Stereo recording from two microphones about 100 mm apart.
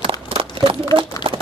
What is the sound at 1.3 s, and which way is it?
Crumpling, 65° right (ahead or behind).